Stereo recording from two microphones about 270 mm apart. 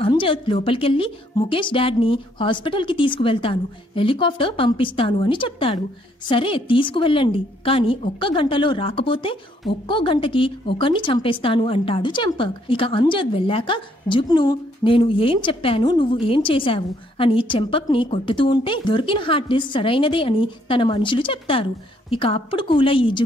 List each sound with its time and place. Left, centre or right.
0.0 s speech: centre